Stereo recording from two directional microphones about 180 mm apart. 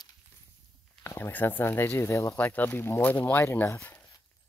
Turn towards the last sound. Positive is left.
turn(degrees=10)  # may be behind; listen again after turning